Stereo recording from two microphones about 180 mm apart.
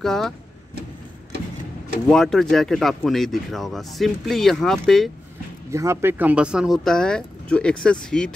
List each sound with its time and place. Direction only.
0.0 s speech: centre (ahead or behind)
2.0 s speech: centre (ahead or behind)
5.7 s speech: 15° right (ahead or behind); by 8.3 s 5° left (ahead or behind)